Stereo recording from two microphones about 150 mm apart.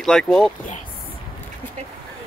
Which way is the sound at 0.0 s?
5° left (ahead or behind).